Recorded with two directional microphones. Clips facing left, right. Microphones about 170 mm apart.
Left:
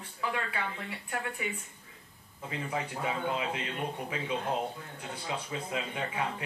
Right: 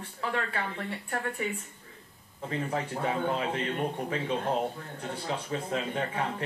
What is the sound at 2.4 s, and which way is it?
Speech, 40° right (ahead or behind).